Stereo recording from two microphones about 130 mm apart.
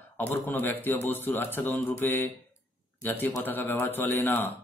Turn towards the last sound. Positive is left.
turn(degrees=15)  # may be behind; listen again after turning